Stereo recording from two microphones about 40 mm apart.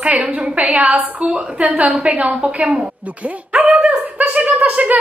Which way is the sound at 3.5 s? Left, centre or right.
Right.